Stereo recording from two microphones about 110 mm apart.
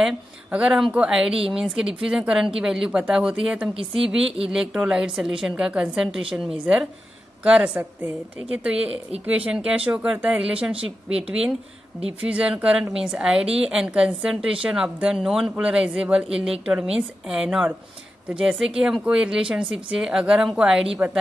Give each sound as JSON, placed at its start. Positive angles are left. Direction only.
{"t": 0.0, "sound": "speech", "side_deg": -10}
{"t": 10.8, "sound": "speech", "side_deg": -65}
{"t": 11.2, "sound": "speech", "side_deg": -5}